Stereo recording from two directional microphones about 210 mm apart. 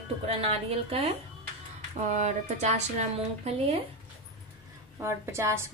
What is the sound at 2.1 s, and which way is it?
A woman's voice, 35° right (ahead or behind).